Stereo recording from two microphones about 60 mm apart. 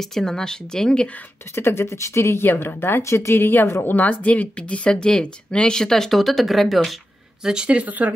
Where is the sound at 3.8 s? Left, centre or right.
Left; by 7.0 s centre.